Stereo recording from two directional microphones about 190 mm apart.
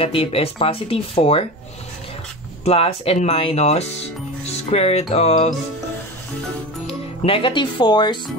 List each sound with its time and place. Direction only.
0.0 s speech: 30° left (ahead or behind)
2.6 s speech: 30° left (ahead or behind)
6.9 s speech: 30° left (ahead or behind)